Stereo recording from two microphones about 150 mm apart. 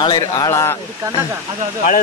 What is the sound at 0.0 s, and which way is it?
Speech, 25° left (ahead or behind).